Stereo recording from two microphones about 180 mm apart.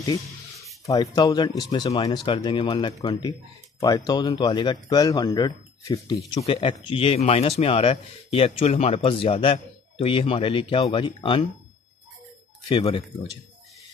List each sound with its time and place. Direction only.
0.8 s speech: 20° left (ahead or behind)
12.6 s speech: 30° left (ahead or behind)